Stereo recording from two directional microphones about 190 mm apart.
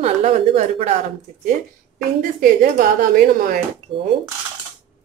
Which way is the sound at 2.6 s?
45° right (ahead or behind).